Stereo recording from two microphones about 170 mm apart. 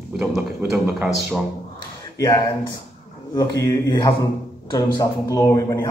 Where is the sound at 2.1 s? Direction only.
20° left (ahead or behind).